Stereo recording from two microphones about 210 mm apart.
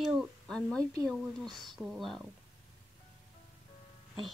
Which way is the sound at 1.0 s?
Centre (ahead or behind).